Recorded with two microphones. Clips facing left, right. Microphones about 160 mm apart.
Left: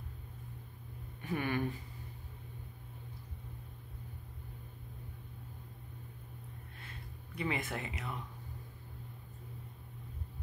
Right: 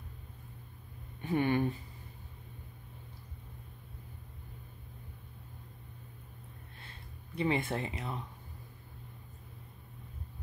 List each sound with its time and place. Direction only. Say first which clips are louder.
1.2 s speech: right 6 dB; 25° right (ahead or behind)
7.3 s speech: right 5 dB; 30° right (ahead or behind)